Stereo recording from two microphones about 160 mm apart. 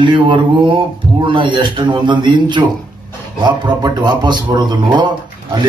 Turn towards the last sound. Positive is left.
turn(degrees=-30)  # may be behind; listen again after turning